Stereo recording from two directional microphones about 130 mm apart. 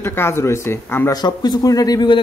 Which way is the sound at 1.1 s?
30° left (ahead or behind).